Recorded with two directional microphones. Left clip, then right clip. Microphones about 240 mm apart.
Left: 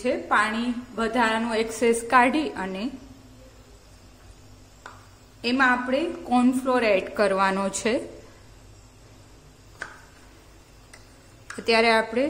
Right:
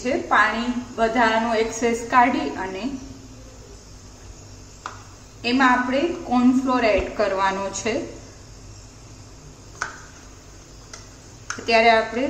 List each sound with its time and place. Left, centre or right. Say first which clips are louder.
0.0 s a woman's voice: right 4 dB; left
5.4 s a woman's voice: right 3 dB; left
11.6 s a woman's voice: right 4 dB; left